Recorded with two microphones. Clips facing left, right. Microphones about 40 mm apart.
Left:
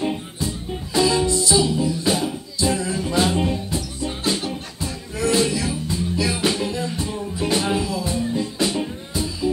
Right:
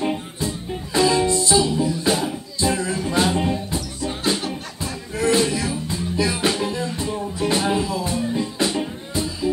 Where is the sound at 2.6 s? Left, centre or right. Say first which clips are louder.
Even; right.